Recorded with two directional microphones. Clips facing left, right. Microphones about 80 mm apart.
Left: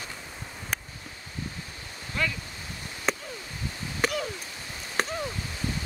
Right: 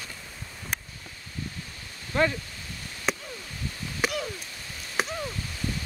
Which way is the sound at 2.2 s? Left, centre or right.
Right.